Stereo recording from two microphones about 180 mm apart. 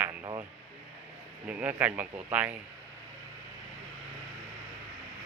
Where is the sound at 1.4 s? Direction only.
5° right (ahead or behind).